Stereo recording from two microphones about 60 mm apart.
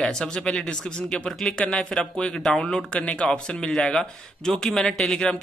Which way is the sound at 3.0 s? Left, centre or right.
Left.